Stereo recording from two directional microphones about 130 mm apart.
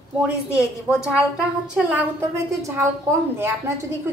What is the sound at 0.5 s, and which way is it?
A woman's voice, 10° right (ahead or behind).